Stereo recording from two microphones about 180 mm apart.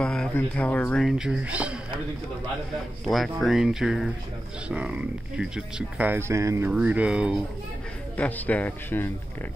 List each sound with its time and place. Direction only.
0.0 s speech: 5° left (ahead or behind)
3.1 s speech: centre (ahead or behind)
8.2 s speech: 10° left (ahead or behind)